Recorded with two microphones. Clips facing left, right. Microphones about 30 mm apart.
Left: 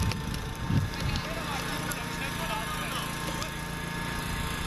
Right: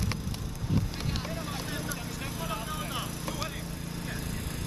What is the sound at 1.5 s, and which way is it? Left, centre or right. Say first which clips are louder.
Vehicle: left 3 dB; left.